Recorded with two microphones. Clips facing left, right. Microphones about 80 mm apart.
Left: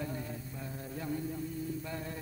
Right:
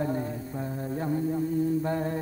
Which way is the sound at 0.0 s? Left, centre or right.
Right.